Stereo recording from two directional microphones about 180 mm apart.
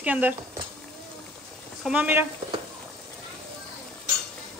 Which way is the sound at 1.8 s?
10° right (ahead or behind).